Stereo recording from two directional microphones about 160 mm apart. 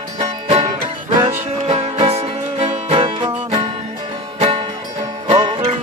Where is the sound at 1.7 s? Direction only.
40° right (ahead or behind).